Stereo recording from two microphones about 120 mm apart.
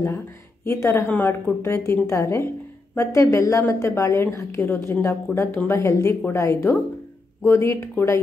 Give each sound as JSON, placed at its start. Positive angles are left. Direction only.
{"t": 0.7, "sound": "a woman's voice", "side_deg": 20}